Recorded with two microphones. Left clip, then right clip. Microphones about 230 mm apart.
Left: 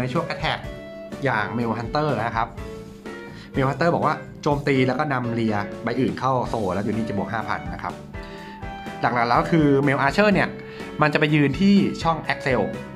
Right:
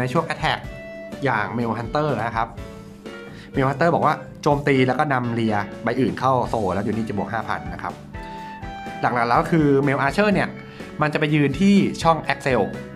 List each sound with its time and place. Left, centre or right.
0.0 s speech: centre
3.5 s speech: centre
9.0 s speech: centre